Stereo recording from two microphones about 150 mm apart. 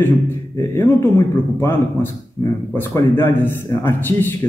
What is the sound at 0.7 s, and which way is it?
A man's voice, 15° left (ahead or behind).